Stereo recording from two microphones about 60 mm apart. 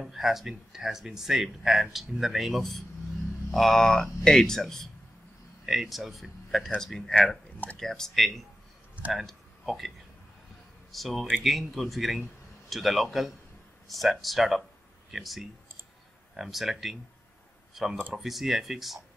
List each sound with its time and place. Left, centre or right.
0.0 s a man's voice: centre